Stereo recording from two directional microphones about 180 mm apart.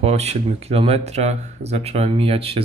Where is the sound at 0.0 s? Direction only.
35° right (ahead or behind).